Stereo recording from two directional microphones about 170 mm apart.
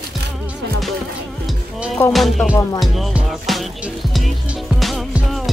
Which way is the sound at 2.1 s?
Centre (ahead or behind).